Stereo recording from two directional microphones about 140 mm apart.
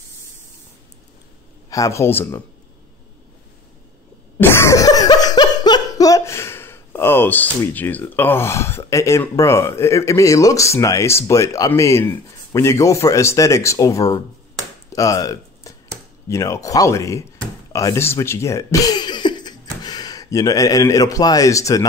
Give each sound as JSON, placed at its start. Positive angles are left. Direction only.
{"t": 1.7, "sound": "speech", "side_deg": 20}
{"t": 4.4, "sound": "speech", "side_deg": 15}
{"t": 14.9, "sound": "a sound", "side_deg": 25}
{"t": 16.3, "sound": "speech", "side_deg": 20}